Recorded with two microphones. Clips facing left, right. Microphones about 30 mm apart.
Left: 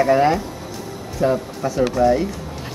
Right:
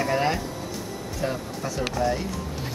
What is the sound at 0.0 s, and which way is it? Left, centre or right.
Speech, centre.